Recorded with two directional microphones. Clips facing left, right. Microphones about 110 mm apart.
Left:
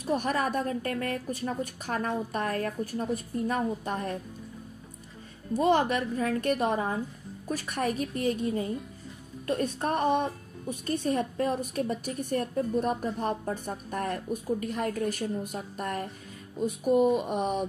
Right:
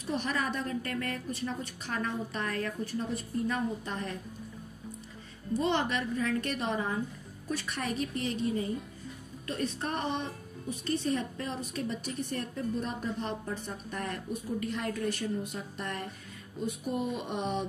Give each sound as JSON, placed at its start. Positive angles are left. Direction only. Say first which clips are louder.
{"t": 0.0, "sound": "a woman's voice", "louder": "left 5 dB", "side_deg": 45}
{"t": 5.5, "sound": "a woman's voice", "louder": "left 5 dB", "side_deg": 45}